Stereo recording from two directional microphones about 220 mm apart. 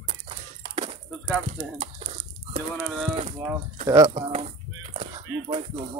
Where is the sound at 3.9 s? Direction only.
15° right (ahead or behind).